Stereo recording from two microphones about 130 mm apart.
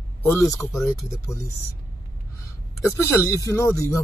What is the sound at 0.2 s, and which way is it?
Speech, 20° left (ahead or behind).